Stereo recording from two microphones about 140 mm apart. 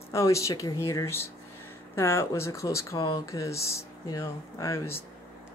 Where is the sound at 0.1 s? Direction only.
20° left (ahead or behind).